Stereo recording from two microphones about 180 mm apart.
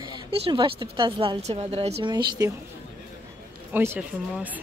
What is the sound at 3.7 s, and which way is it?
Speech, 10° right (ahead or behind).